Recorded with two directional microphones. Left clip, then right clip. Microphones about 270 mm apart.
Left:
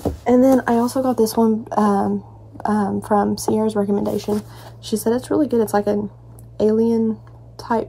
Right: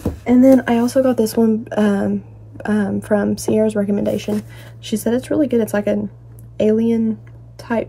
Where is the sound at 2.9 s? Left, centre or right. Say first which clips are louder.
Right 1 dB; left.